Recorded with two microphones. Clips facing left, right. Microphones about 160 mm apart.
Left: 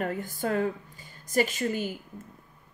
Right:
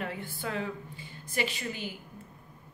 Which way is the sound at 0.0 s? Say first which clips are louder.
Left 6 dB; 45° left (ahead or behind).